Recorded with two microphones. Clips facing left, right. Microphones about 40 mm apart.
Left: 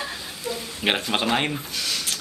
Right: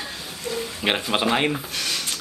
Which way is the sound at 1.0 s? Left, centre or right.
Centre.